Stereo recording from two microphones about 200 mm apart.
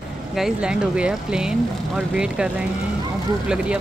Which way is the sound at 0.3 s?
5° right (ahead or behind).